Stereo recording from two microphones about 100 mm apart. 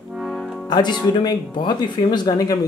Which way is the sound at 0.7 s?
45° left (ahead or behind).